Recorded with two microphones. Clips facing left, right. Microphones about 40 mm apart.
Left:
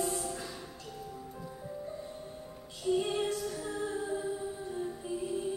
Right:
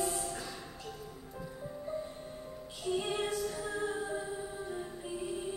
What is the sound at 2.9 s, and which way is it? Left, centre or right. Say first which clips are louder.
Music: left 1 dB; centre.